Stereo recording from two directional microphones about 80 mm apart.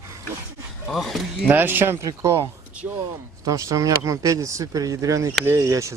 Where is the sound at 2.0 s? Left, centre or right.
Right.